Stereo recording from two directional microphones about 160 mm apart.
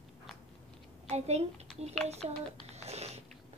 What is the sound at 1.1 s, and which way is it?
Speech, 40° right (ahead or behind).